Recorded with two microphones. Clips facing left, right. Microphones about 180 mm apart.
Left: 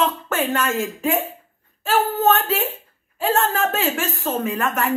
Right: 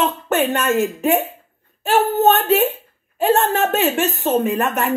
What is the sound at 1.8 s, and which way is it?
Speech, 20° right (ahead or behind).